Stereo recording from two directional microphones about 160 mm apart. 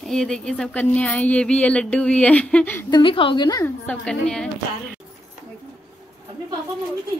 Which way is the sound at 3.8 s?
5° left (ahead or behind).